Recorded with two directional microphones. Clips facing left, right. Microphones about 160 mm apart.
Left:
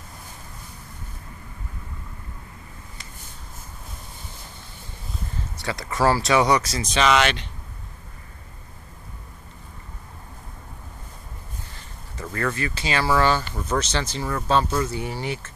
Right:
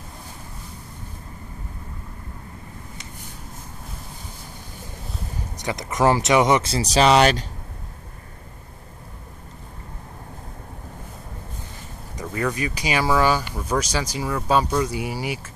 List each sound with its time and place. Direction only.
5.6 s speech: 20° right (ahead or behind); by 7.4 s 35° right (ahead or behind)
12.2 s speech: 15° right (ahead or behind)